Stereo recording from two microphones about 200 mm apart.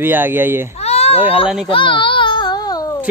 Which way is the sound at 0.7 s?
30° left (ahead or behind).